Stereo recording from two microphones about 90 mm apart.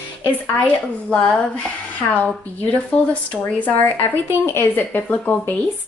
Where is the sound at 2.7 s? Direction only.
15° left (ahead or behind).